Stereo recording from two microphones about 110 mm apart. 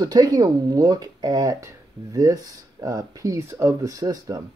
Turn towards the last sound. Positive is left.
turn(degrees=-35)  # may be behind; listen again after turning